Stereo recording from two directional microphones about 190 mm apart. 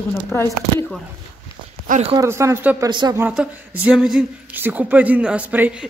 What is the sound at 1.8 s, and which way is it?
Speech, 40° right (ahead or behind).